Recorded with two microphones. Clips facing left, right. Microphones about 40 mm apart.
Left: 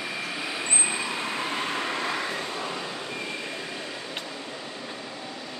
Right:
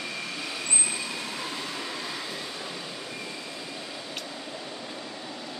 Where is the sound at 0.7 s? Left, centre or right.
Left.